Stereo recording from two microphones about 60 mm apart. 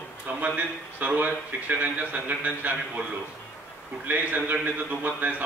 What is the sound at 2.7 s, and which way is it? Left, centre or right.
Speech, centre.